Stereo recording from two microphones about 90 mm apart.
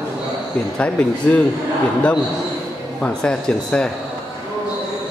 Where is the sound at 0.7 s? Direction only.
15° left (ahead or behind).